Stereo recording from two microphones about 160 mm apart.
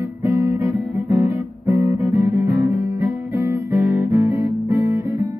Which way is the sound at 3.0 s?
15° right (ahead or behind).